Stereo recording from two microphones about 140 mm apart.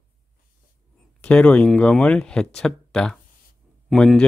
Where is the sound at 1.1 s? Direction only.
10° left (ahead or behind).